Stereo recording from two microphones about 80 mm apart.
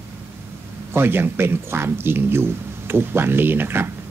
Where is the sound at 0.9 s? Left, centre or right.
Right.